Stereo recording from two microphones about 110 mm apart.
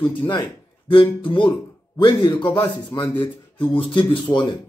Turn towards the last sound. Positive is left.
turn(degrees=50)  # may be behind; listen again after turning